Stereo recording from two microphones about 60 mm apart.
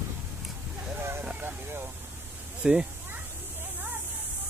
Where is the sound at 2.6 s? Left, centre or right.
Centre.